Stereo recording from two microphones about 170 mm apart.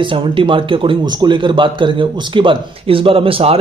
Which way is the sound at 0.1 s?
30° right (ahead or behind).